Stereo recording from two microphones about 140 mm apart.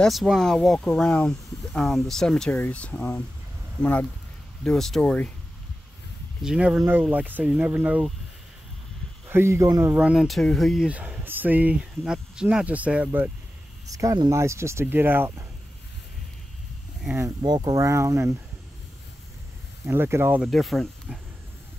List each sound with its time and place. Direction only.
0.0 s speech: centre (ahead or behind)
6.4 s speech: 5° right (ahead or behind)
9.3 s speech: 20° right (ahead or behind)
9.9 s speech: 5° right (ahead or behind)
10.9 s speech: 10° right (ahead or behind)
13.8 s speech: 25° right (ahead or behind)
17.4 s speech: 30° right (ahead or behind)
19.9 s speech: 15° right (ahead or behind)
20.4 s speech: centre (ahead or behind)